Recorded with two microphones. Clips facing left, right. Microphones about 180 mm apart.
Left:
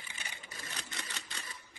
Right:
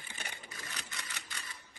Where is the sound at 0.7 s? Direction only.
25° left (ahead or behind).